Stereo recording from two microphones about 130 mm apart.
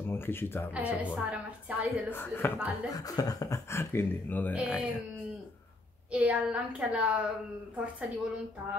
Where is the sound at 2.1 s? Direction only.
15° left (ahead or behind).